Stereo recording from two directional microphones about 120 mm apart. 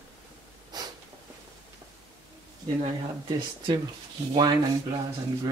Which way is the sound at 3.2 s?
45° right (ahead or behind).